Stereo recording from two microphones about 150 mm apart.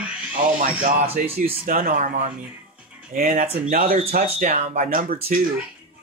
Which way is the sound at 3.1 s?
70° right (ahead or behind).